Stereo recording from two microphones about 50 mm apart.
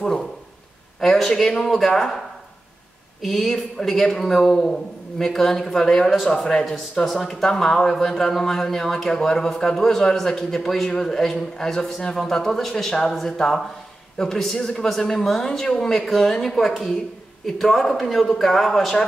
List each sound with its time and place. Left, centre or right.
0.0 s a sound: centre
1.0 s a man's voice: centre
3.2 s speech: centre
6.3 s a man's voice: centre